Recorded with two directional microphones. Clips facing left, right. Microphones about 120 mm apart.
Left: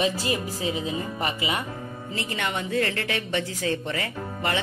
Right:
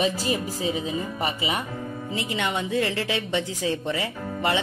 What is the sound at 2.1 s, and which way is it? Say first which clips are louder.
A woman's voice: right 2 dB; 20° right (ahead or behind).